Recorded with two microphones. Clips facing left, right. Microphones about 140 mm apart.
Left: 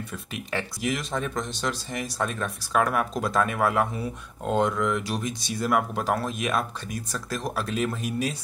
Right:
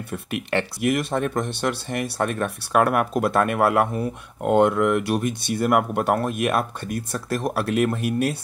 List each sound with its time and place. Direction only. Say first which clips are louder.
0.1 s speech: right 9 dB; 65° right (ahead or behind)